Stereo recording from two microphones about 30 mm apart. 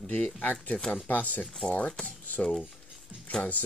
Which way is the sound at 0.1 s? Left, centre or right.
Left.